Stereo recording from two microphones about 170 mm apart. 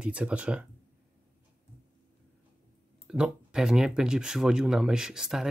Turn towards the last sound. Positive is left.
turn(degrees=-5)  # may be behind; listen again after turning